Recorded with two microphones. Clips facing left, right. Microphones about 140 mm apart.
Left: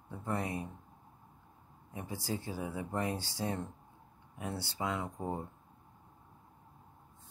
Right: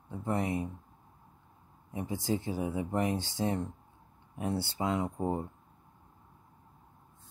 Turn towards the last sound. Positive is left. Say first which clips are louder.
# right 6 dB
turn(degrees=-20)  # may be behind; listen again after turning